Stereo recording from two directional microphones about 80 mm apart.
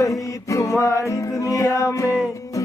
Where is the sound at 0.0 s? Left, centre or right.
Left.